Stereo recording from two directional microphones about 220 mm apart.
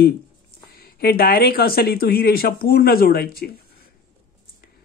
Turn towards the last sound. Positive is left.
turn(degrees=45)  # may be behind; listen again after turning